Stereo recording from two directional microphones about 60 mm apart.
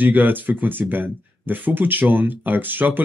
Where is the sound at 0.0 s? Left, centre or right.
Right.